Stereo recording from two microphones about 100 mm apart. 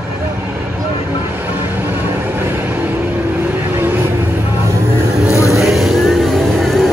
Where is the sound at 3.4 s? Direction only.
20° right (ahead or behind).